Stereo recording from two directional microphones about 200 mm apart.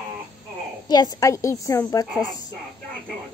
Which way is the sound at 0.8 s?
20° left (ahead or behind).